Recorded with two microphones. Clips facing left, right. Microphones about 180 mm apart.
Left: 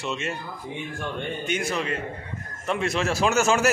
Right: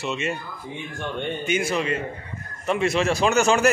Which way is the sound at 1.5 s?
5° right (ahead or behind).